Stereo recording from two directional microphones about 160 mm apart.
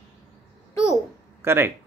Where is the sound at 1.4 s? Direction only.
15° right (ahead or behind).